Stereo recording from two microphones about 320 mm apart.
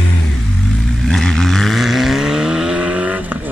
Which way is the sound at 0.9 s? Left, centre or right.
Centre.